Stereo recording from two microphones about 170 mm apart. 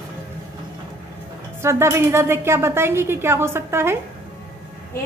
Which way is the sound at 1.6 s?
15° right (ahead or behind).